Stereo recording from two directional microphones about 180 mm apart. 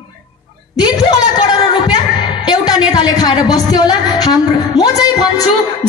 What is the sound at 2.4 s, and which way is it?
A woman's voice, 20° left (ahead or behind).